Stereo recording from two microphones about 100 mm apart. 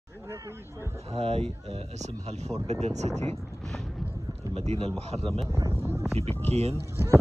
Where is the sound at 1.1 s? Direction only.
80° right.